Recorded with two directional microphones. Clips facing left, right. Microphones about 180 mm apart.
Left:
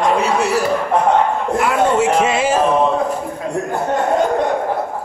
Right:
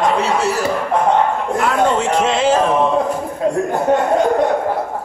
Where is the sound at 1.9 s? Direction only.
10° left (ahead or behind).